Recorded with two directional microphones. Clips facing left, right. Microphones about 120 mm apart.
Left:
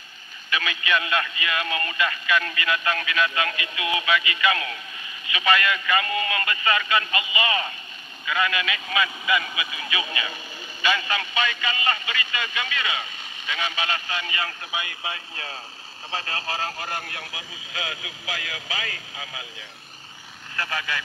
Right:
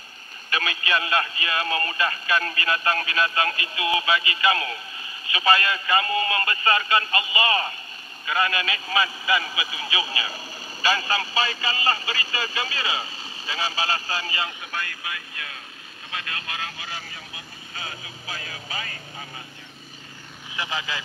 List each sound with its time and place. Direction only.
0.5 s speech: 35° right (ahead or behind)
14.7 s speech: 15° left (ahead or behind)
15.0 s speech: 30° left (ahead or behind); by 19.4 s 90° left
20.5 s speech: 20° right (ahead or behind)